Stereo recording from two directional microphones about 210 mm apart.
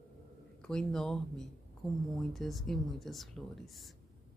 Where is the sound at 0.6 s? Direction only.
5° left (ahead or behind).